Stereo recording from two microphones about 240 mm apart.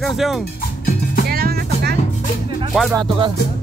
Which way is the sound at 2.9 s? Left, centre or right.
Centre.